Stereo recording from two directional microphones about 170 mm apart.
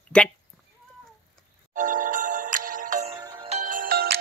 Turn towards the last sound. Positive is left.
turn(degrees=-60)  # may be behind; listen again after turning